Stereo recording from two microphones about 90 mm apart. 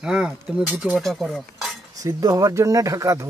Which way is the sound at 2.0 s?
40° right (ahead or behind).